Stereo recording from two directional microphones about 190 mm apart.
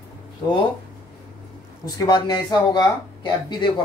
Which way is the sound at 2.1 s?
20° left (ahead or behind).